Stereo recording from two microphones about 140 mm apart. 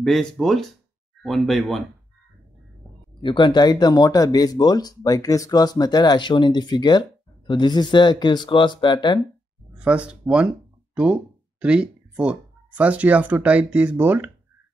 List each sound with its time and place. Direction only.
0.0 s speech: 5° left (ahead or behind)
3.2 s speech: 35° left (ahead or behind)
9.8 s speech: 10° right (ahead or behind)
11.6 s speech: 5° right (ahead or behind)